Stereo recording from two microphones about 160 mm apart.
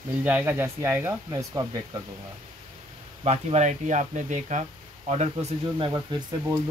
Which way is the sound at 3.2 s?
45° right (ahead or behind).